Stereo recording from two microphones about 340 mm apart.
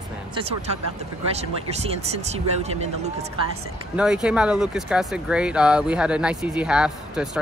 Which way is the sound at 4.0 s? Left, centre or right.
Centre.